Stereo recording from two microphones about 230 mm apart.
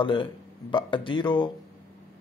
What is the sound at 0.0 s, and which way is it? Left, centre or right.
Speech, left.